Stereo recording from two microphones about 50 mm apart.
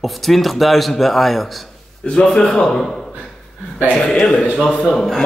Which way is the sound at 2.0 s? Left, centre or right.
Centre.